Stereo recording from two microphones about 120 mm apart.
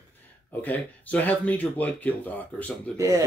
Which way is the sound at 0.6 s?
15° left (ahead or behind).